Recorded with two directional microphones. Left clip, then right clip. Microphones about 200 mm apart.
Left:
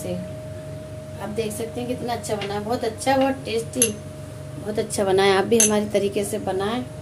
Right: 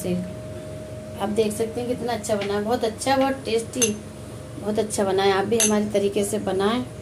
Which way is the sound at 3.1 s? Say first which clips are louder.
Left 1 dB; 10° right (ahead or behind).